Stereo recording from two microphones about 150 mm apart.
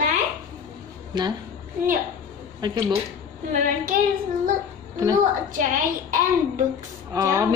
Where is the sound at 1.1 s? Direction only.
30° right (ahead or behind).